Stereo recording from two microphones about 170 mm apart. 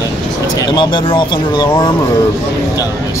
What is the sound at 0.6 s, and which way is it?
Speech, 25° left (ahead or behind).